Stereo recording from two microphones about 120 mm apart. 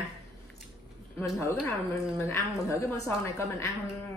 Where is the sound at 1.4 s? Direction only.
20° left (ahead or behind).